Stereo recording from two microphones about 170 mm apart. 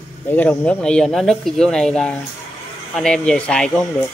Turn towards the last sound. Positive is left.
turn(degrees=5)  # may be behind; listen again after turning